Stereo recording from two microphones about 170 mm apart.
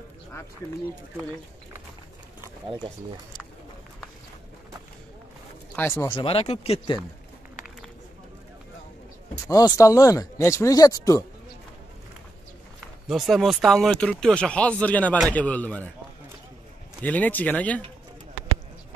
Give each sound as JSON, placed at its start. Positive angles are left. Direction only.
{"t": 5.8, "sound": "speech", "side_deg": 10}
{"t": 6.0, "sound": "speech", "side_deg": 30}
{"t": 9.5, "sound": "speech", "side_deg": 20}
{"t": 13.1, "sound": "speech", "side_deg": 0}
{"t": 17.0, "sound": "speech", "side_deg": 10}